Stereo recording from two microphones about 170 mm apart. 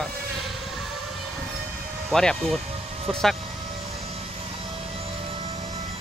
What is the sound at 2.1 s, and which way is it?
Speech, 5° left (ahead or behind).